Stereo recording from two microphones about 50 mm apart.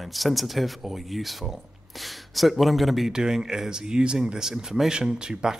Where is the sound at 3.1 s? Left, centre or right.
Centre.